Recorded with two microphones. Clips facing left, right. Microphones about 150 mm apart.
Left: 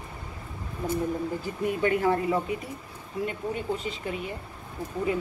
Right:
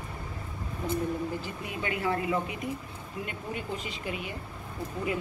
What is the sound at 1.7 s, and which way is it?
A woman's voice, 45° left (ahead or behind).